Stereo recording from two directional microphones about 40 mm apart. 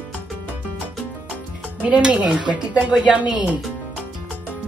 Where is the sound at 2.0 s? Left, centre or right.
Right.